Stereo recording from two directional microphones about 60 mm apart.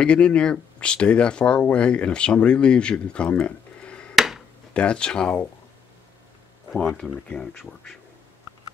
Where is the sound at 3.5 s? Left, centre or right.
Centre.